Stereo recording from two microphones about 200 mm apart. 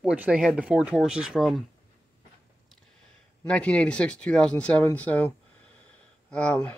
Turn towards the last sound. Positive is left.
turn(degrees=5)  # may be behind; listen again after turning